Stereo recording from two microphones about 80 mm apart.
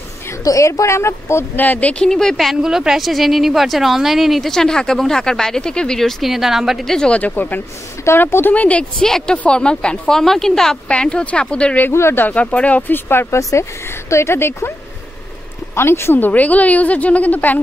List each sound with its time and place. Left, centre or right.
0.4 s speech: left
1.6 s speech: centre
2.0 s a woman's voice: centre
9.0 s a woman's voice: centre
11.9 s speech: left
12.3 s a woman's voice: centre
13.4 s speech: left
15.7 s a woman's voice: left